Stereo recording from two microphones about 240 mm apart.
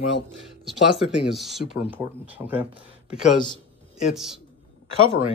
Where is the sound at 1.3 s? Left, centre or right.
Centre.